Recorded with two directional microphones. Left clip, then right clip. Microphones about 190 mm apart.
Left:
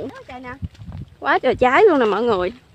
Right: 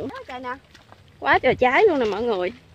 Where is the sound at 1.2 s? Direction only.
20° left (ahead or behind).